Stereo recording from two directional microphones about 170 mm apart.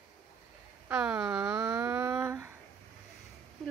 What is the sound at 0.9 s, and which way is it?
Speech, 5° right (ahead or behind).